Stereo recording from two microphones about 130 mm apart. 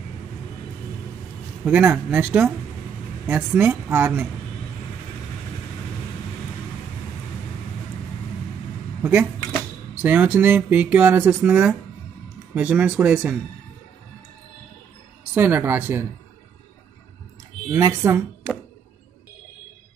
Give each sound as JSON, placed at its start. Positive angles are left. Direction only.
{"t": 1.6, "sound": "speech", "side_deg": -10}
{"t": 9.0, "sound": "speech", "side_deg": -15}
{"t": 15.3, "sound": "speech", "side_deg": -15}
{"t": 17.6, "sound": "speech", "side_deg": -20}